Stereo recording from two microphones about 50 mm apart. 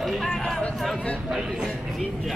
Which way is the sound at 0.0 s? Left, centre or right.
Centre.